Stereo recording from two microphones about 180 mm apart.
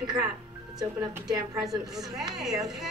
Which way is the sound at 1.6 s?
Centre (ahead or behind).